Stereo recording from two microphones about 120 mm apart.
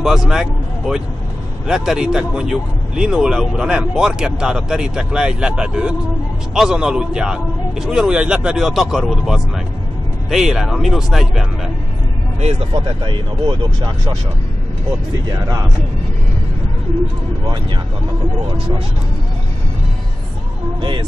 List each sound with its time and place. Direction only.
0.0 s speech: 5° right (ahead or behind)
12.4 s speech: 60° right (ahead or behind); by 14.1 s 40° right (ahead or behind)
15.2 s speech: 30° right (ahead or behind)